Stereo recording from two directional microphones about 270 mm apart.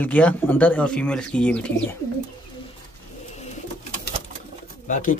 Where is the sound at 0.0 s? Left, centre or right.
Centre.